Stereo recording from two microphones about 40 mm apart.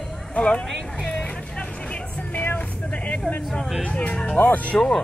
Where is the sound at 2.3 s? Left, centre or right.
Left.